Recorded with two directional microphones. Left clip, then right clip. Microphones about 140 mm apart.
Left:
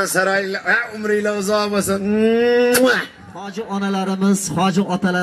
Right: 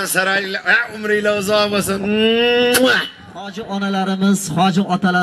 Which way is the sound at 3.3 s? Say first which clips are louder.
Even; 50° right (ahead or behind).